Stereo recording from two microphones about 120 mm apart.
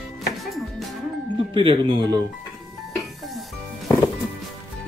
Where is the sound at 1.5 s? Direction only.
45° right (ahead or behind).